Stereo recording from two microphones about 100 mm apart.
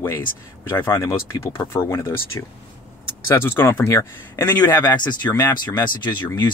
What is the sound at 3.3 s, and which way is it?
Speech, 25° left (ahead or behind).